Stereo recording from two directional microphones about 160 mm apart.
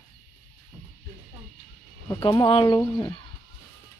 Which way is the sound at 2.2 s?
30° left (ahead or behind).